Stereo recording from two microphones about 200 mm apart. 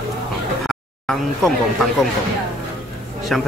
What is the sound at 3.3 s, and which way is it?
Speech, centre (ahead or behind).